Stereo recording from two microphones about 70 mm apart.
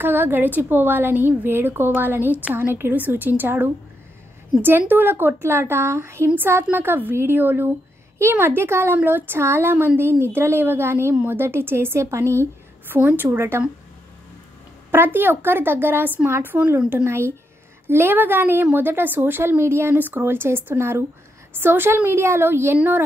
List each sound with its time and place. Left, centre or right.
0.0 s a woman's voice: right
12.8 s a woman's voice: right
14.9 s a woman's voice: right
17.8 s a woman's voice: right